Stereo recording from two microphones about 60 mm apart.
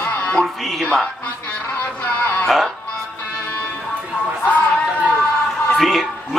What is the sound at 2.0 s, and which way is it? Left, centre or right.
Music, left.